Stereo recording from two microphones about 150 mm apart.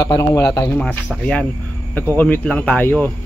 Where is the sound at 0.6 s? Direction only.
10° left (ahead or behind).